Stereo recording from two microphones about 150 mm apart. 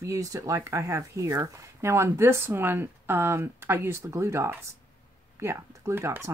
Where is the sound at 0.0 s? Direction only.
20° right (ahead or behind).